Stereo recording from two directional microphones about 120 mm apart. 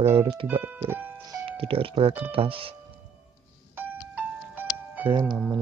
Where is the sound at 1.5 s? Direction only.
50° right (ahead or behind).